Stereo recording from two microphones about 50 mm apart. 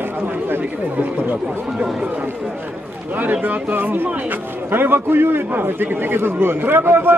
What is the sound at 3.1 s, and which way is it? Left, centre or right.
A man's voice, right.